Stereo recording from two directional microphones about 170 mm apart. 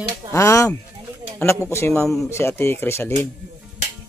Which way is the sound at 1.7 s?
15° left (ahead or behind).